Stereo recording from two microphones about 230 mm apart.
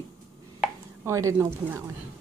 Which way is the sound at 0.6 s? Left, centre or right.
Centre.